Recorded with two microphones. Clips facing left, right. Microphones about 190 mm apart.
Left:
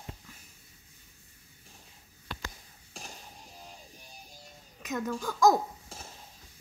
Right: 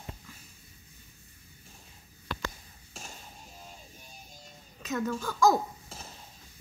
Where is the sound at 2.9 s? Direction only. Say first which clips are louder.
Even; 15° left (ahead or behind).